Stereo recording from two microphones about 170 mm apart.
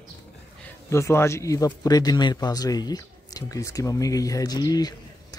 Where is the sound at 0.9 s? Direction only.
15° left (ahead or behind).